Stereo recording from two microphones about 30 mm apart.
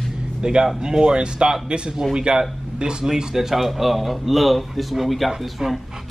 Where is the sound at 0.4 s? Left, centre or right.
Right.